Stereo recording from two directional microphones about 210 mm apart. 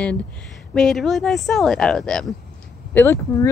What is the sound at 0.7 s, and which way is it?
A woman's voice, centre (ahead or behind).